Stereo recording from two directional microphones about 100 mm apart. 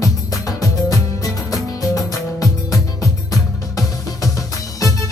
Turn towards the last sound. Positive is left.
turn(degrees=35)  # may be behind; listen again after turning